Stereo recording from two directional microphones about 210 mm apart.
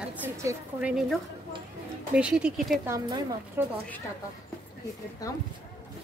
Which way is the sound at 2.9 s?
15° right (ahead or behind).